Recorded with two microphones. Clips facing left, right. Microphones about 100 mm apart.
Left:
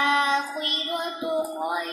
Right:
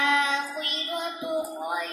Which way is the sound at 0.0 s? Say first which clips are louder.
Left 2 dB; 40° left (ahead or behind).